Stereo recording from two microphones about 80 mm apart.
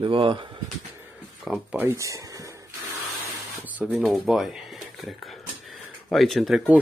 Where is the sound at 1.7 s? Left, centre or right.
Right.